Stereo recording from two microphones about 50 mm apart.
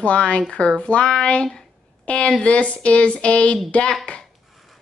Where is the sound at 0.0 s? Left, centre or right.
Left.